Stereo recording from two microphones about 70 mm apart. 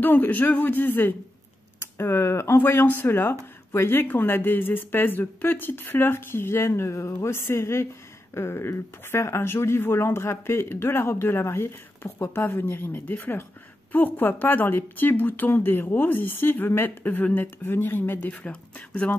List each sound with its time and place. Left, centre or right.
0.0 s speech: left
1.8 s speech: left
18.3 s speech: centre